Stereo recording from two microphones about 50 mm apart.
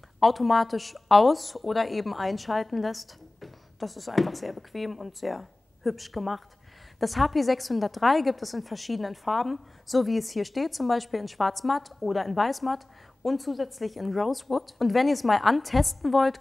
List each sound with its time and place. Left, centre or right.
0.2 s a woman's voice: centre